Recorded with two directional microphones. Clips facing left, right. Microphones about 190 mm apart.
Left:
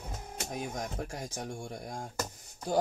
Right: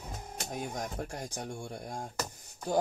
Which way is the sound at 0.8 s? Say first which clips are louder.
Even; 35° right (ahead or behind).